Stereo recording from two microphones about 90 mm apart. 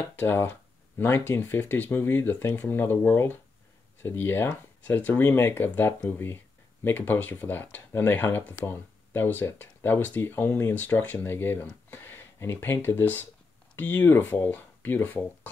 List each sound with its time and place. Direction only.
0.0 s speech: 25° left (ahead or behind)